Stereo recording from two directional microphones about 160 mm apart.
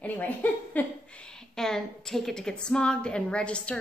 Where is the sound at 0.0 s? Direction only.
10° left (ahead or behind).